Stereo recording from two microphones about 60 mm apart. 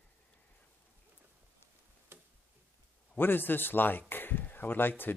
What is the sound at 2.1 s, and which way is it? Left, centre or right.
Tick-tock, right.